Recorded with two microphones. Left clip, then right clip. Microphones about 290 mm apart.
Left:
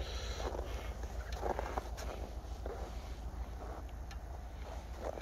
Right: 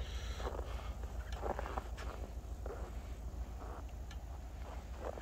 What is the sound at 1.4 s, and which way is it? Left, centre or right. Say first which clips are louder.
Vehicle: left 3 dB; left.